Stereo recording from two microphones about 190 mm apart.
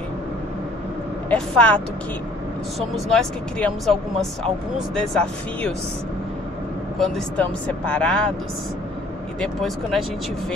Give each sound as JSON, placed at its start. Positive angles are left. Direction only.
{"t": 1.3, "sound": "speech", "side_deg": 5}
{"t": 3.1, "sound": "speech", "side_deg": 5}
{"t": 7.0, "sound": "speech", "side_deg": 5}
{"t": 9.4, "sound": "speech", "side_deg": 0}